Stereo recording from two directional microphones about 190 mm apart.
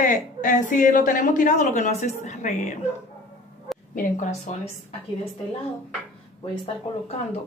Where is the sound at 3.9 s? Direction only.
40° left (ahead or behind).